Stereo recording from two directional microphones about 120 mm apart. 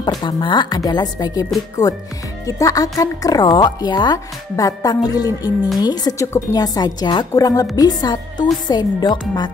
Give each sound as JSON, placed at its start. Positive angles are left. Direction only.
{"t": 0.0, "sound": "a woman's voice", "side_deg": 40}